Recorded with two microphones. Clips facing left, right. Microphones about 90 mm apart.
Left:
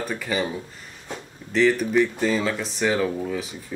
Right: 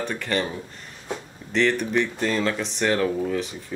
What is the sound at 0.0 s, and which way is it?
Speech, 5° left (ahead or behind).